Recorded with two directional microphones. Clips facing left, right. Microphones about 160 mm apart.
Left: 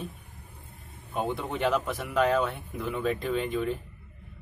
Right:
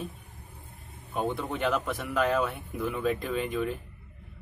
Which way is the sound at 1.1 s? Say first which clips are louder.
Even; centre (ahead or behind).